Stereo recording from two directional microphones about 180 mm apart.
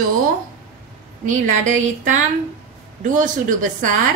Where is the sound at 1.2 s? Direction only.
45° right (ahead or behind).